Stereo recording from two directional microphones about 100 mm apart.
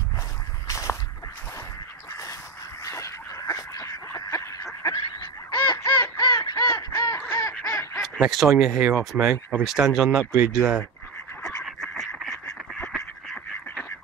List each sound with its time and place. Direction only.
0.7 s a sound: 30° left (ahead or behind)
2.8 s a sound: 30° left (ahead or behind)
4.8 s goose: 45° left (ahead or behind)
5.9 s quack: 40° left (ahead or behind)
7.6 s duck: 25° left (ahead or behind)
8.0 s speech: centre (ahead or behind)
11.6 s goose: 5° left (ahead or behind)
12.8 s duck: centre (ahead or behind)
13.7 s duck: 20° left (ahead or behind)